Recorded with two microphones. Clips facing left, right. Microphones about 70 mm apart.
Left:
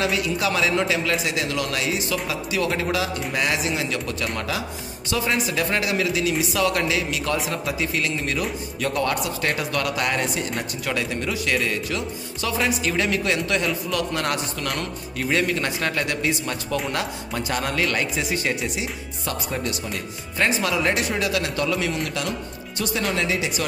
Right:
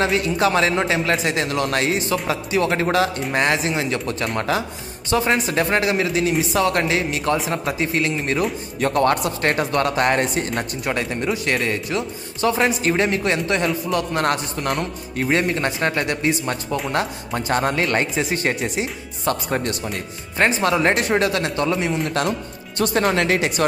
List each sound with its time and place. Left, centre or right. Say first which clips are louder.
0.0 s speech: right 4 dB; right
10.9 s speech: right 3 dB; right
22.8 s speech: right 6 dB; right